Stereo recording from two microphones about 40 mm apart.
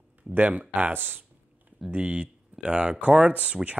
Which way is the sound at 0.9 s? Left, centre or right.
Right.